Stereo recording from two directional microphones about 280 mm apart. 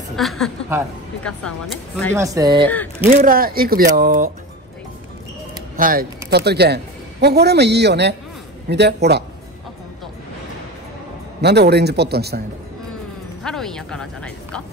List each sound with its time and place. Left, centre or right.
0.1 s a woman's voice: centre
2.1 s speech: centre
3.1 s speech: right
5.8 s a man's voice: right
11.4 s speech: right
13.4 s speech: centre